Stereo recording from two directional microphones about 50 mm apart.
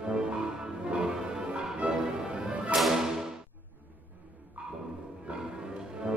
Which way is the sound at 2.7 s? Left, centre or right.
Centre.